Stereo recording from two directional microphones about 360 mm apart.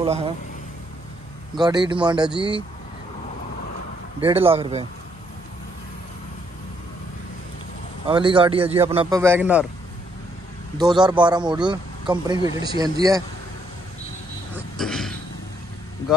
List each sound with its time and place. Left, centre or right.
0.0 s speech: centre
1.5 s speech: centre
2.3 s speech: centre
4.2 s speech: centre
8.1 s speech: centre
10.8 s speech: centre
14.8 s a sound: centre